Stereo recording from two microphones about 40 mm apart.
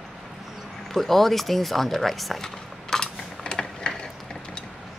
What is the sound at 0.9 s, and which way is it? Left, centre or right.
Speech, centre.